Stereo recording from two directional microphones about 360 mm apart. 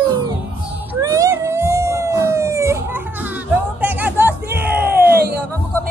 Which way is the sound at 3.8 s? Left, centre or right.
Centre.